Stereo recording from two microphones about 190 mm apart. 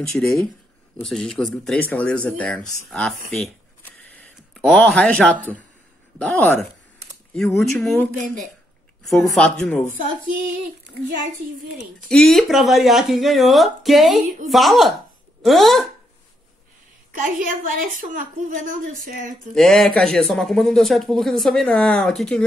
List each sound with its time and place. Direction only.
0.2 s speech: 5° left (ahead or behind)
12.1 s speech: centre (ahead or behind)
17.1 s a woman's voice: 45° right (ahead or behind)
19.5 s speech: centre (ahead or behind)